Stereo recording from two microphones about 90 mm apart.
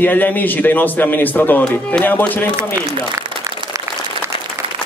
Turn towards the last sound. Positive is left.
turn(degrees=-35)  # may be behind; listen again after turning